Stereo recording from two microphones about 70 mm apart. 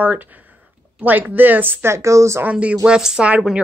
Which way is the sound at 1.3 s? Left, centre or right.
Right.